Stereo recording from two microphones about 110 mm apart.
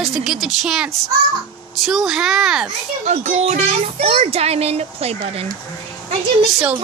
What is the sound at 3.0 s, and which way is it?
Speech, 90° right.